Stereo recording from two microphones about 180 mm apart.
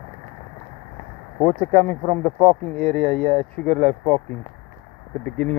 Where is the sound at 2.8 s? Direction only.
5° left (ahead or behind).